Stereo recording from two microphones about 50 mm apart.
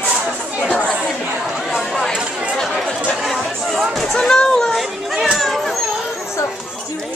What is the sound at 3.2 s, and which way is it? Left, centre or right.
Chatter, centre.